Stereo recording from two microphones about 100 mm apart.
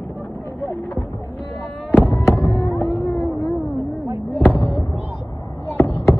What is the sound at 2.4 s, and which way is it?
Music, 20° left (ahead or behind).